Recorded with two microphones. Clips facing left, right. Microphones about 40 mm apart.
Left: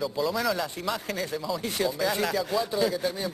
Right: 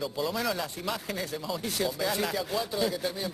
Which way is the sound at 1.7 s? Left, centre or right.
Centre.